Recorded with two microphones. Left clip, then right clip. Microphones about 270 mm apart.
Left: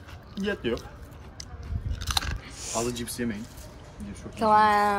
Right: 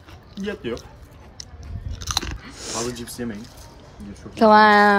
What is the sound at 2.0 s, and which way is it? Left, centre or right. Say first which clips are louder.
Chewing: right 3 dB; right.